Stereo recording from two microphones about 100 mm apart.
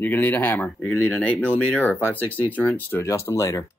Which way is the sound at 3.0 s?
30° left (ahead or behind).